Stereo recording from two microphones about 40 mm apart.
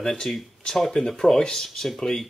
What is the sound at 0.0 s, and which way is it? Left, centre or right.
Speech, centre.